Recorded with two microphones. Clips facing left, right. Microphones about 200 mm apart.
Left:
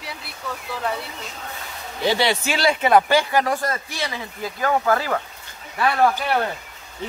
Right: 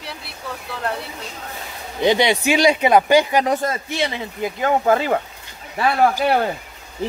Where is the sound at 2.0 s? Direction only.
15° right (ahead or behind).